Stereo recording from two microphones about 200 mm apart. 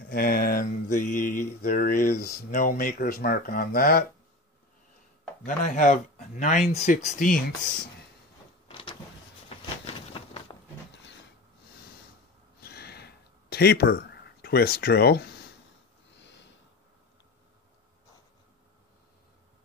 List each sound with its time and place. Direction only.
0.1 s speech: 50° left (ahead or behind)
5.4 s speech: 40° left (ahead or behind)
8.6 s power windows: 25° left (ahead or behind)
9.9 s a sound: 25° left (ahead or behind)
12.6 s a sound: 50° left (ahead or behind)
16.2 s snort: 60° left (ahead or behind)